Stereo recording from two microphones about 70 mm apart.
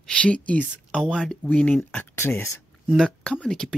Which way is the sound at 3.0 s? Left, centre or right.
Centre.